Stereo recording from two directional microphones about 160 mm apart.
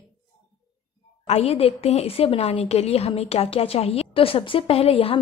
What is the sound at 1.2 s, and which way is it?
A woman's voice, 40° left (ahead or behind).